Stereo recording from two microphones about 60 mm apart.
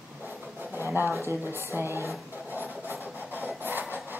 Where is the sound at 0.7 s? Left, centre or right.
Right.